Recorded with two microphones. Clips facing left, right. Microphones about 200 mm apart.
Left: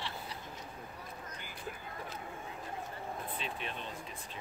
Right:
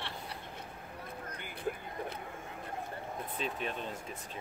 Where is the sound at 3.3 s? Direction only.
40° right (ahead or behind).